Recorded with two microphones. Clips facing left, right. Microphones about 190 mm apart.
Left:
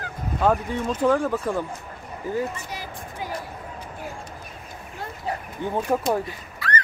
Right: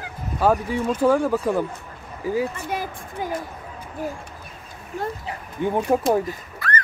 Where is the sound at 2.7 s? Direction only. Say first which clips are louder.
Right 8 dB; 55° right (ahead or behind).